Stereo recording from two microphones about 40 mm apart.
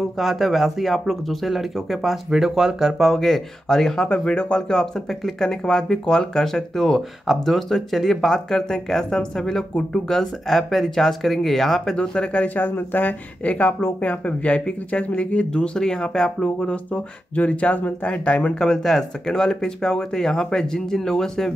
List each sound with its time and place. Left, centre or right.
0.2 s speech: centre
3.0 s speech: centre
4.1 s speech: left; by 11.9 s centre
11.9 s speech: left
12.5 s speech: left
13.4 s speech: left
16.9 s speech: left
18.1 s speech: left
18.6 s speech: centre